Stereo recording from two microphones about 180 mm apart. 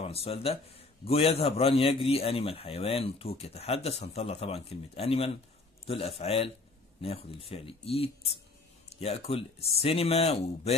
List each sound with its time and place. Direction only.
0.0 s a man's voice: 35° left (ahead or behind)